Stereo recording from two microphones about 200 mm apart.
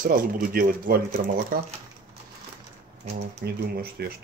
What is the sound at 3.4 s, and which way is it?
Speech, 50° right (ahead or behind).